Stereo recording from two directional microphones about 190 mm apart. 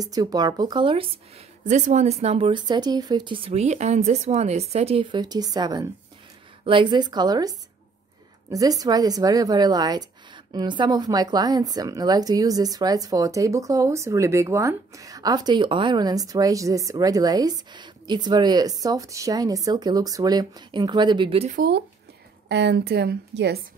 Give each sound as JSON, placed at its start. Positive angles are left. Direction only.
{"t": 0.0, "sound": "a woman's voice", "side_deg": -20}
{"t": 22.5, "sound": "a woman's voice", "side_deg": -65}